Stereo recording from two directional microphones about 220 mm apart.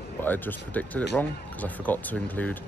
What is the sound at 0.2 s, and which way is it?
Speech, 10° left (ahead or behind).